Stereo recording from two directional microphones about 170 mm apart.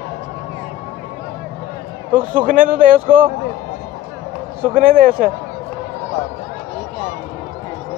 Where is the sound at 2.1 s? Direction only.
50° right (ahead or behind).